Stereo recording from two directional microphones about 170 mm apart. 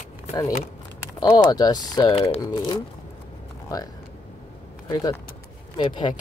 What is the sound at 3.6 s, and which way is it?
Speech, 20° left (ahead or behind).